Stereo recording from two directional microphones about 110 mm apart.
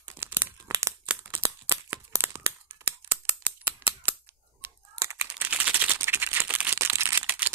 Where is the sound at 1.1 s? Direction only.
20° right (ahead or behind).